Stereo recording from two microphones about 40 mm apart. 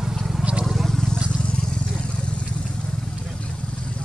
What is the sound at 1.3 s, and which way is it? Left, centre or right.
Vehicle, left.